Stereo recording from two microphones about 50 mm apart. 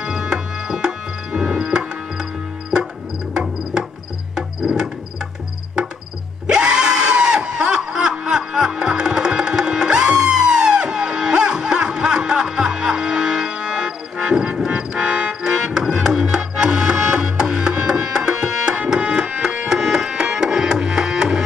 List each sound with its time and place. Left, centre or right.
0.0 s music: centre
4.4 s music: centre
6.4 s a sound: centre